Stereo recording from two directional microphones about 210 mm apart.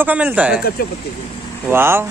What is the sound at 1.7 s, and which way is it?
Speech, 10° right (ahead or behind).